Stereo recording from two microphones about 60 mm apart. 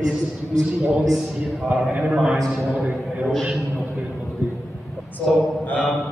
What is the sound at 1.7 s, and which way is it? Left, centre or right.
A man's voice, centre.